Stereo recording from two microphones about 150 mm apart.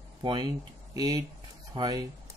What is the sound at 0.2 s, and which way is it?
Speech, 30° right (ahead or behind).